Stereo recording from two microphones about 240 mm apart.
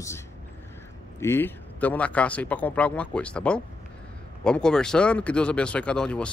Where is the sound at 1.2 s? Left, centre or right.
Centre.